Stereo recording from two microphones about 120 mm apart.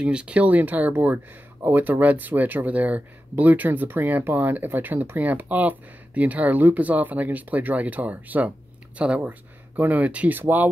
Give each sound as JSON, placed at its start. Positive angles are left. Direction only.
{"t": 0.0, "sound": "speech", "side_deg": -10}